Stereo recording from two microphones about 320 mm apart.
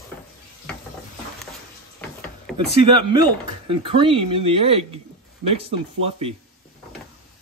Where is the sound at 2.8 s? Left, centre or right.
Centre.